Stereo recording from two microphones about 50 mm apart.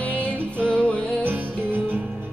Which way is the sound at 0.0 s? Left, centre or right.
Left.